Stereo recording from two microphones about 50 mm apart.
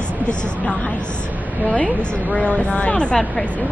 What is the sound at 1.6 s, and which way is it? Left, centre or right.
Speech, left.